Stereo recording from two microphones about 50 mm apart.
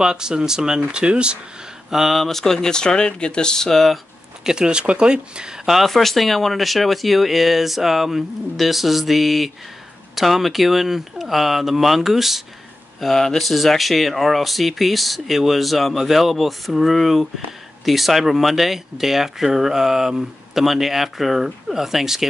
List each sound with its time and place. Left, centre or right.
0.0 s speech: centre
1.9 s speech: centre
4.5 s speech: centre
5.7 s speech: centre
13.0 s speech: centre